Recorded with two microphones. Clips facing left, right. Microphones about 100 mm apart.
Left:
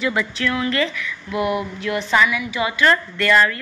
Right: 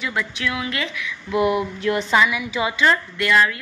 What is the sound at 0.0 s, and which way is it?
Speech, centre (ahead or behind).